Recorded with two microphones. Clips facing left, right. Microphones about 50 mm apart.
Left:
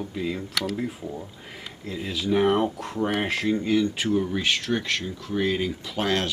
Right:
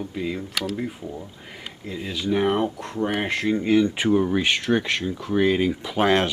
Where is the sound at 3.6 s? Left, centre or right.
Right.